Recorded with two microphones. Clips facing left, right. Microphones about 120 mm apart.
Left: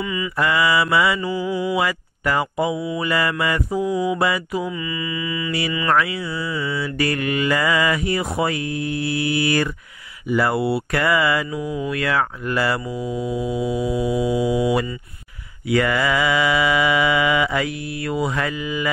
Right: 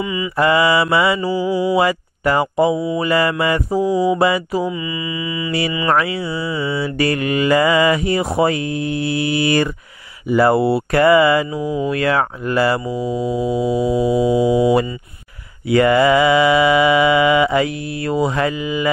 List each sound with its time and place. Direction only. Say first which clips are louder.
0.0 s mantra: right 5 dB; 20° right (ahead or behind)
1.7 s speech: right 6 dB; 30° right (ahead or behind)
4.6 s mantra: right 3 dB; 20° right (ahead or behind)
12.9 s speech: right 4 dB; 35° right (ahead or behind)
15.7 s mantra: right 7 dB; 30° right (ahead or behind)